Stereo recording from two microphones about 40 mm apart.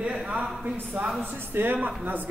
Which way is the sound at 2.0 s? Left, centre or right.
Right.